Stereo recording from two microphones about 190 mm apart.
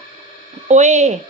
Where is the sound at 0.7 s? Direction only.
40° right (ahead or behind).